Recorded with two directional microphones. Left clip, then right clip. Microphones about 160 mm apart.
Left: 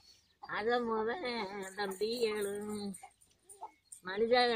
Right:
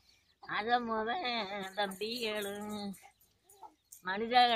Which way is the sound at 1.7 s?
25° right (ahead or behind).